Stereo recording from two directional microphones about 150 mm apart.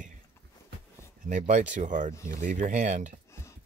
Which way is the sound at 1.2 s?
55° right (ahead or behind).